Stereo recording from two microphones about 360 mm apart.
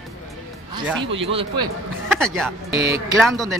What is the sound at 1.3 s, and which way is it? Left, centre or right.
Speech, centre.